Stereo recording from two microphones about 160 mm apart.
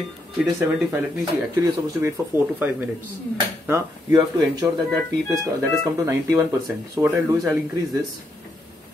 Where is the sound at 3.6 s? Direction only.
15° right (ahead or behind).